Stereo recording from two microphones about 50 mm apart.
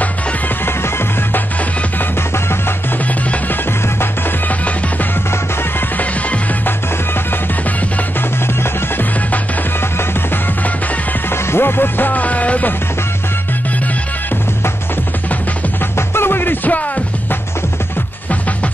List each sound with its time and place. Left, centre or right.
0.7 s music: left
5.9 s music: left
11.2 s music: left
16.2 s music: left